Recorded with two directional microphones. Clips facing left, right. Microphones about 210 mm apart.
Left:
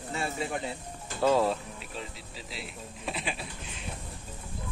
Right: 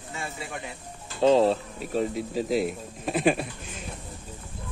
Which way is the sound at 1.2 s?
25° right (ahead or behind).